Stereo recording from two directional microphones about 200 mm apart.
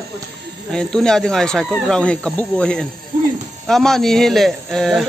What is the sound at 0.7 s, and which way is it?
A man's voice, 5° left (ahead or behind).